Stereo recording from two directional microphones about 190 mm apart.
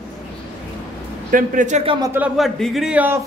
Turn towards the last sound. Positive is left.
turn(degrees=-10)  # may be behind; listen again after turning